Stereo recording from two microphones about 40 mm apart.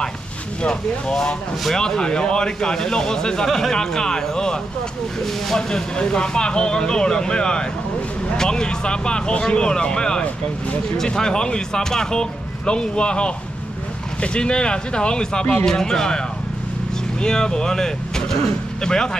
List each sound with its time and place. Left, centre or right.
0.6 s speech: left
3.4 s speech: centre
3.7 s speech: centre
5.2 s speech: centre
5.8 s speech: left
17.2 s speech: centre